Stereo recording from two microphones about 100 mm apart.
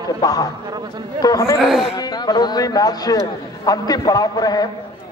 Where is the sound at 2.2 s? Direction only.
40° left (ahead or behind).